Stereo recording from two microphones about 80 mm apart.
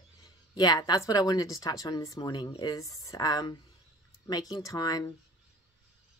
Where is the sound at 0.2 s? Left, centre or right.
Left.